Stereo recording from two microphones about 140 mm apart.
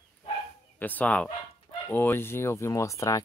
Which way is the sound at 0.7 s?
10° left (ahead or behind).